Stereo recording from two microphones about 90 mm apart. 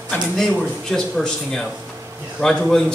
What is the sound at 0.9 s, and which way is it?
A man's voice, 5° left (ahead or behind).